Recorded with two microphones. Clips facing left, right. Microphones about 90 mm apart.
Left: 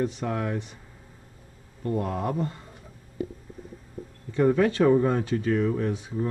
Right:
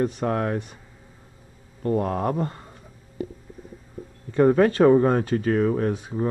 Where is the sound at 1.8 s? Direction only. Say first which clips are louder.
Right 4 dB; 45° right (ahead or behind).